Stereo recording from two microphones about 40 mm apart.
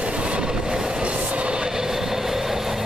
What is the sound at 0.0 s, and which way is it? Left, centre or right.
Train, right.